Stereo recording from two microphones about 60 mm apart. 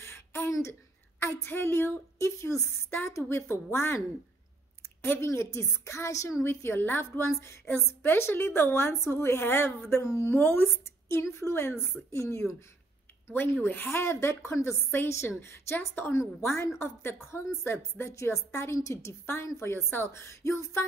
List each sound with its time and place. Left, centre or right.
0.0 s a sound: left
1.2 s a woman's voice: left
5.0 s a woman's voice: left
6.4 s a woman's voice: left
13.8 s a woman's voice: left
15.2 s a woman's voice: left
19.6 s a woman's voice: left
20.1 s a woman's voice: left